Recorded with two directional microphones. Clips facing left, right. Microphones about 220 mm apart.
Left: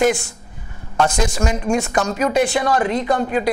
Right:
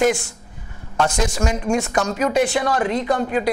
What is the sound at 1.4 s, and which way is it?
A woman's voice, 20° left (ahead or behind).